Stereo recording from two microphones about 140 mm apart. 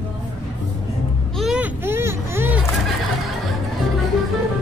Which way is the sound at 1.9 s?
15° right (ahead or behind).